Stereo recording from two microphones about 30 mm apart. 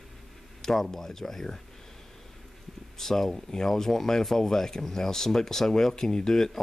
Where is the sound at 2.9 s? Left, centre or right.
Centre.